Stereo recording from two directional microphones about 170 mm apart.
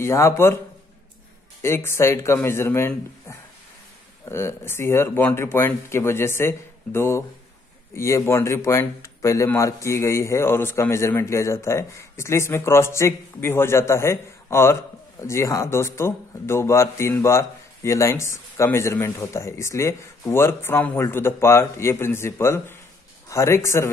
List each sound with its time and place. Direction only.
0.0 s speech: 15° left (ahead or behind)
1.6 s speech: 15° left (ahead or behind)